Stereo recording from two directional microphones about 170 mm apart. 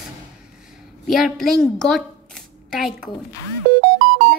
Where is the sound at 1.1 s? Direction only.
Centre (ahead or behind).